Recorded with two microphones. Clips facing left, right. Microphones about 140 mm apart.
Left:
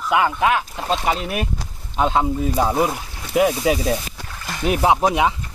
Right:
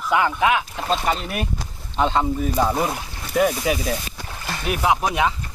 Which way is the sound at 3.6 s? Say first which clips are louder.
Left 4 dB; 25° left (ahead or behind).